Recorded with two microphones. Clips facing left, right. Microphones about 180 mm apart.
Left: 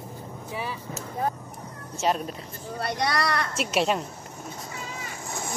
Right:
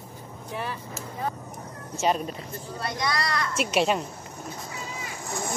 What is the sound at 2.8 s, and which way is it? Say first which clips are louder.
Speech: left 3 dB; 65° left (ahead or behind).